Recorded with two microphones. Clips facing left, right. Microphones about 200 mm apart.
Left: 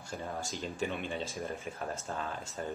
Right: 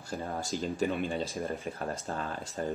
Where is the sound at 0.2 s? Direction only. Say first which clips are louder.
Right 5 dB; 40° right (ahead or behind).